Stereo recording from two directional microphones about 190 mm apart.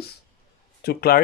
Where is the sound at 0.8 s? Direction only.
55° left (ahead or behind).